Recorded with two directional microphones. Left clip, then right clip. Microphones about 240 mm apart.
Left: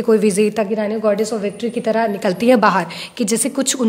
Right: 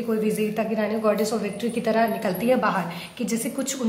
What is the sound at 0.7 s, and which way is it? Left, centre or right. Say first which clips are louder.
A woman's voice: left 5 dB; left.